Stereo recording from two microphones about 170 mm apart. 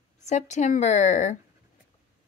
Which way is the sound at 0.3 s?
45° left (ahead or behind).